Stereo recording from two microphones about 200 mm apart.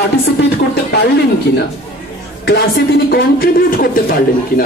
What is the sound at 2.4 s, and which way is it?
A man's voice, 55° left (ahead or behind).